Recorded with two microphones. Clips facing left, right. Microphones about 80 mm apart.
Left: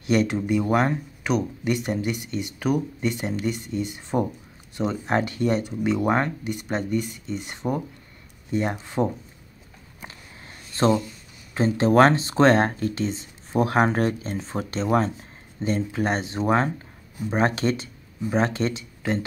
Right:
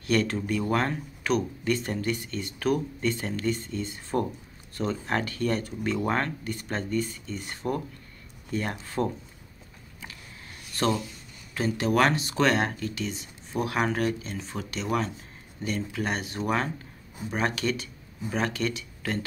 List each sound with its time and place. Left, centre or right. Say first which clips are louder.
0.0 s speech: left 4 dB; centre
10.0 s a sound: left 2 dB; left
11.5 s speech: left 7 dB; left